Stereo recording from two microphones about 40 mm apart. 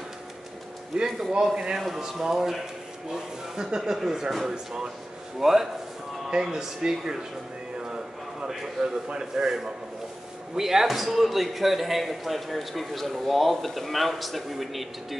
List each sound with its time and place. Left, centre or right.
0.9 s speech: centre
5.4 s speech: centre
8.8 s a man's voice: centre